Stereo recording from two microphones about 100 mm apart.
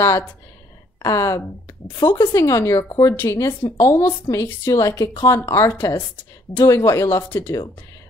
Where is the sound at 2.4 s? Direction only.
35° left (ahead or behind).